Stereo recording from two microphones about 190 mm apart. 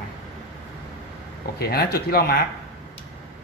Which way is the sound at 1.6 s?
55° left (ahead or behind).